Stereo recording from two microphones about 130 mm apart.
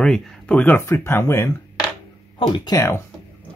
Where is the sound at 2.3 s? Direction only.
40° left (ahead or behind).